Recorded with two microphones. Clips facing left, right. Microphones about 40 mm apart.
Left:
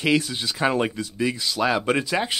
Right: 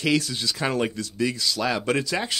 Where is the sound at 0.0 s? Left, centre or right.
Left.